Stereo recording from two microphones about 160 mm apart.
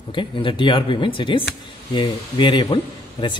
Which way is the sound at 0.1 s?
30° left (ahead or behind).